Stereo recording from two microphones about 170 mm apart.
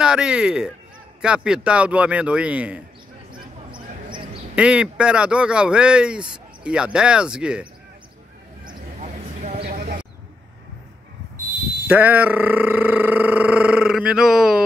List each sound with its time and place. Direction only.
0.0 s speech: 5° right (ahead or behind)
3.3 s basketball bounce: 30° right (ahead or behind)
4.6 s speech: 5° right (ahead or behind)
9.0 s a sound: 40° right (ahead or behind)
9.7 s a sound: 55° right (ahead or behind)
11.9 s speech: 10° right (ahead or behind)